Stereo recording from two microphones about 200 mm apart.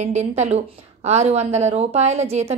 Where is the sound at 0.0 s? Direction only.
35° right (ahead or behind).